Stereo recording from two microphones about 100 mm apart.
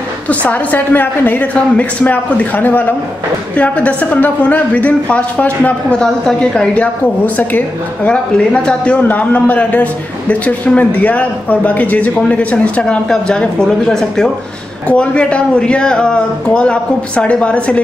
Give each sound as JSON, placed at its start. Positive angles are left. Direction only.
{"t": 0.3, "sound": "a man's voice", "side_deg": 15}